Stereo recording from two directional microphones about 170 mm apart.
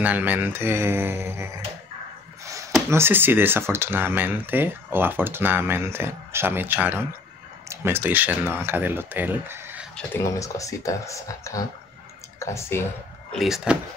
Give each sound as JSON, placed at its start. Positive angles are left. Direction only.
{"t": 0.0, "sound": "speech", "side_deg": -10}
{"t": 2.4, "sound": "a sound", "side_deg": -20}
{"t": 2.9, "sound": "speech", "side_deg": -15}
{"t": 9.9, "sound": "speech", "side_deg": 15}
{"t": 13.3, "sound": "speech", "side_deg": 0}